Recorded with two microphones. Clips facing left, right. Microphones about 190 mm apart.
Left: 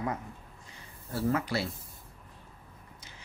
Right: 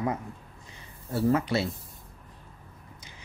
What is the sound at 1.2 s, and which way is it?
Speech, 25° right (ahead or behind).